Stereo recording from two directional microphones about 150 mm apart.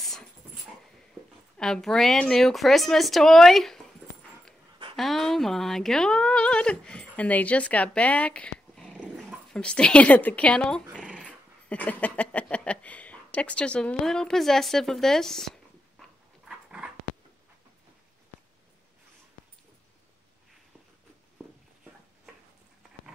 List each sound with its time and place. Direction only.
1.6 s a woman's voice: 5° left (ahead or behind)
4.9 s speech: centre (ahead or behind)
10.9 s dog: 5° right (ahead or behind)
11.7 s speech: 10° left (ahead or behind)
16.4 s a sound: 5° right (ahead or behind)